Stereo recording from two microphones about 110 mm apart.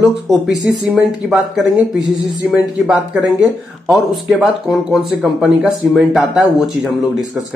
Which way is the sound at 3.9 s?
Centre (ahead or behind).